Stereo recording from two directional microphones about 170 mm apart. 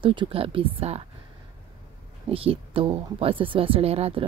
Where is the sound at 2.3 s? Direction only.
35° right (ahead or behind).